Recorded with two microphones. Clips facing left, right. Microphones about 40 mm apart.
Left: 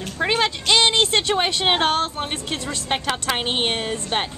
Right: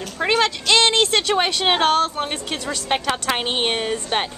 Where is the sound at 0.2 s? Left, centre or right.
Centre.